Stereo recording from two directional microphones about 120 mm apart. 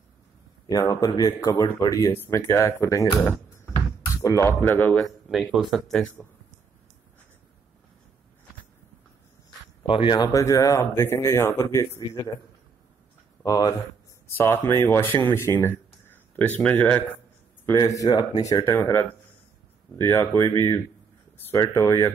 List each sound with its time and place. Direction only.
0.7 s a man's voice: 30° left (ahead or behind)
5.3 s speech: 5° right (ahead or behind)
9.8 s speech: 50° left (ahead or behind)
10.1 s speech: 30° left (ahead or behind)
13.4 s speech: 35° left (ahead or behind)
14.2 s speech: 20° left (ahead or behind)
17.6 s speech: 30° left (ahead or behind)